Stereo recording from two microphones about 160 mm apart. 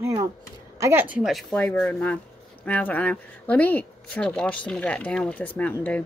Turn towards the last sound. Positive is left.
turn(degrees=10)  # may be behind; listen again after turning